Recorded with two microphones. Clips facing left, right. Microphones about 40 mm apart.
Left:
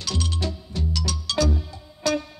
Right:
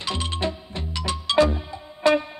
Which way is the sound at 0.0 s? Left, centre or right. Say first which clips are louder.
Right 2 dB; right.